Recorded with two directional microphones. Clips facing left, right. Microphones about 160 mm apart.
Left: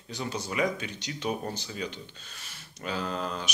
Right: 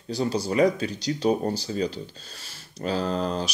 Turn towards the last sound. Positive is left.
turn(degrees=-35)  # may be behind; listen again after turning